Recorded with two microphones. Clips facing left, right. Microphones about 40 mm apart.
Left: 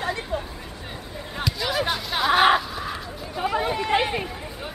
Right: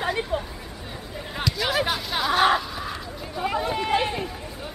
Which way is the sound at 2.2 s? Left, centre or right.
Centre.